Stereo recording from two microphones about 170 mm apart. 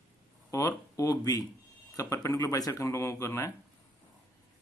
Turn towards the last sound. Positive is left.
turn(degrees=15)  # may be behind; listen again after turning